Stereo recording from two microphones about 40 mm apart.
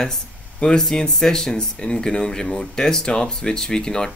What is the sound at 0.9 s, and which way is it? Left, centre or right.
Speech, centre.